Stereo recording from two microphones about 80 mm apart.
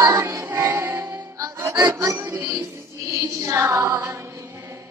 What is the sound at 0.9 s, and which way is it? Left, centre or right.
Music, right.